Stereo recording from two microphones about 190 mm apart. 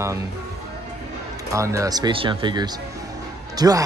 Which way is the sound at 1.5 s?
15° right (ahead or behind).